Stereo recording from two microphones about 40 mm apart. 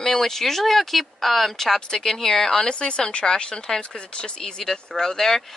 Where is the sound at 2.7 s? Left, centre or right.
Left.